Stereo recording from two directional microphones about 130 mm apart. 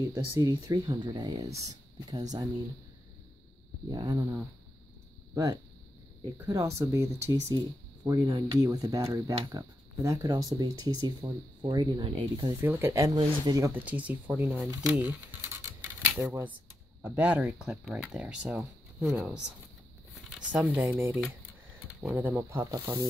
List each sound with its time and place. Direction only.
0.5 s speech: 30° right (ahead or behind)
3.9 s speech: 35° right (ahead or behind)
5.3 s speech: 20° right (ahead or behind)
12.6 s speech: 20° right (ahead or behind)
13.7 s speech: 15° right (ahead or behind)
14.9 s a sound: 15° right (ahead or behind)
17.0 s speech: 15° right (ahead or behind)
20.9 s speech: 20° right (ahead or behind)